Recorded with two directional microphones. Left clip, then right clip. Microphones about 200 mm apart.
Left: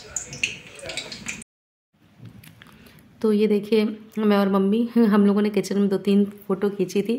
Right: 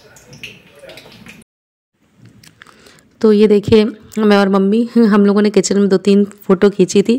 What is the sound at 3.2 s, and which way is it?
Speech, 40° right (ahead or behind).